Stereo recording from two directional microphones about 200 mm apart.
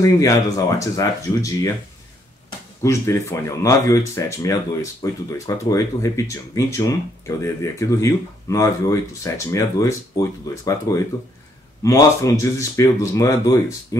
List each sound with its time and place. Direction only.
0.0 s speech: 15° left (ahead or behind)
2.8 s speech: 15° left (ahead or behind)